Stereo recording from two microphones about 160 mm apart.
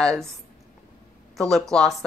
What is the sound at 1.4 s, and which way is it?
Speech, 5° left (ahead or behind).